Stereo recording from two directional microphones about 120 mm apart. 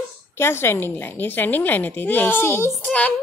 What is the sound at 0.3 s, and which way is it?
Speech, 20° left (ahead or behind).